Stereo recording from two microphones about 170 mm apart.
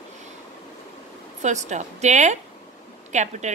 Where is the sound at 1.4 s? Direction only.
45° right (ahead or behind).